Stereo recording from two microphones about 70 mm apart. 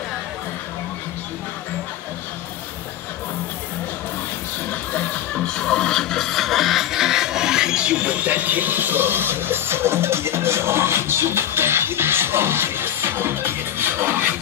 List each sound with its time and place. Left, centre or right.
4.6 s music: centre; by 14.3 s right